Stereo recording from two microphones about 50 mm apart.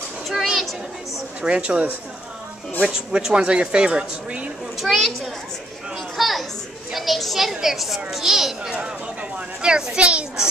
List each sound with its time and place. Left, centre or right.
0.3 s a child's voice: centre
1.4 s speech: right
2.9 s speech: centre
4.7 s a child's voice: centre
6.1 s a sound: centre
6.9 s a child's voice: centre
9.6 s a child's voice: centre